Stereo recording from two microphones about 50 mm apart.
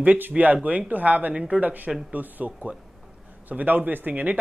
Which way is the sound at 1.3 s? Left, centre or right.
Centre.